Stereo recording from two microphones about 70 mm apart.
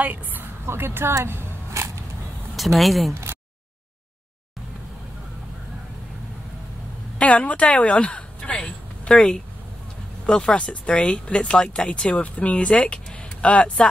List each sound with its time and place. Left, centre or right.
0.0 s a woman's voice: right
1.1 s vehicle: right
2.5 s speech: centre
7.2 s speech: centre